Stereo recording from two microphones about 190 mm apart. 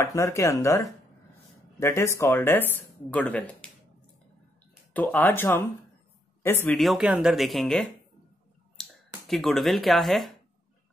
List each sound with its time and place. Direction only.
0.0 s speech: 15° left (ahead or behind)
4.9 s speech: 10° left (ahead or behind)
6.8 s speech: 5° right (ahead or behind)
8.8 s a sound: 5° left (ahead or behind)
9.3 s speech: centre (ahead or behind)